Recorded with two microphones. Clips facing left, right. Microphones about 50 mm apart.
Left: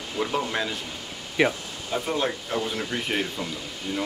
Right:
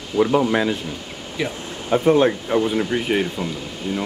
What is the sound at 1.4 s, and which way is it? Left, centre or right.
Speech, left.